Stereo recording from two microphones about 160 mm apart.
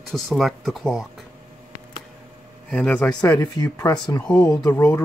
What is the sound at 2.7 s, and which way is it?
Speech, 5° left (ahead or behind).